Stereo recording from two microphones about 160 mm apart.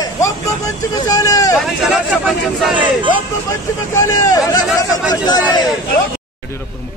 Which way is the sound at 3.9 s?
20° left (ahead or behind).